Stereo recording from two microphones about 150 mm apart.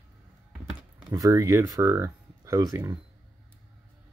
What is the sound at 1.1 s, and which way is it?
Speech, 20° right (ahead or behind).